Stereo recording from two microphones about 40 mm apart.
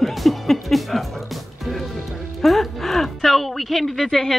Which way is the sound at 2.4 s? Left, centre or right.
Centre.